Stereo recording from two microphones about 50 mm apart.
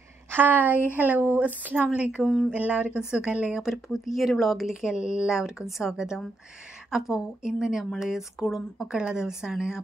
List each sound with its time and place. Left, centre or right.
0.3 s speech: right
2.0 s speech: centre
2.5 s speech: right
3.1 s speech: centre
3.7 s speech: centre
4.9 s speech: centre